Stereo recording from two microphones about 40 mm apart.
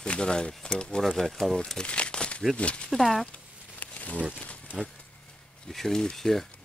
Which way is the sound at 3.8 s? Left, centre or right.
Left.